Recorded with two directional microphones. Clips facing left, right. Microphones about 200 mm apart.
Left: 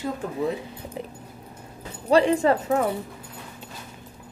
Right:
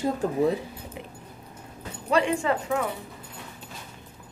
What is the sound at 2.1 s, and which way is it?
Speech, 35° left (ahead or behind).